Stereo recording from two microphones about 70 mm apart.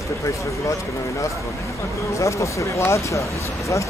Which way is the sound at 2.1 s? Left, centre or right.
Left.